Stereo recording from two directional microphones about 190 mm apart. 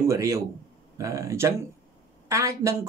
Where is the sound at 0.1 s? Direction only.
15° right (ahead or behind).